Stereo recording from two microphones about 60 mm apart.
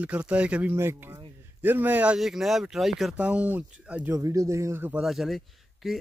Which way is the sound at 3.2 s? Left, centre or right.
Right.